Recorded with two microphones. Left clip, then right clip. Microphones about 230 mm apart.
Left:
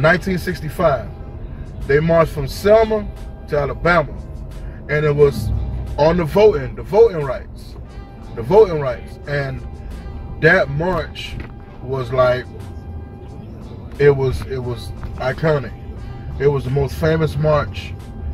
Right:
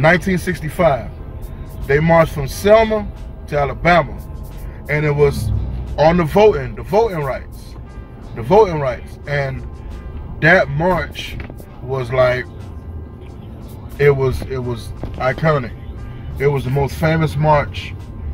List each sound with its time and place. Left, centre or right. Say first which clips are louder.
0.0 s a man's voice: right 1 dB; centre
8.5 s a man's voice: even; centre
13.9 s a man's voice: even; centre